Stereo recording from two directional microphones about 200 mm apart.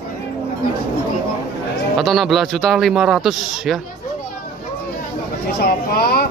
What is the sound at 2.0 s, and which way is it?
Speech, centre (ahead or behind).